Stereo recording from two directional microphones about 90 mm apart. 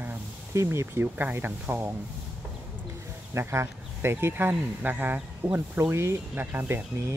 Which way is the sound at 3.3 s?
30° right (ahead or behind).